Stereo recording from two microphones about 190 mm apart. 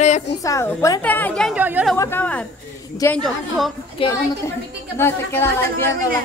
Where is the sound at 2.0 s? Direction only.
10° left (ahead or behind).